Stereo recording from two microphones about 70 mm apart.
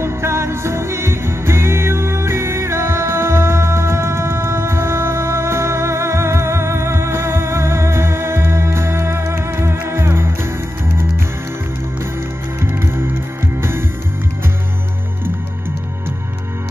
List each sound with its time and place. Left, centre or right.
0.0 s music: right
12.5 s music: right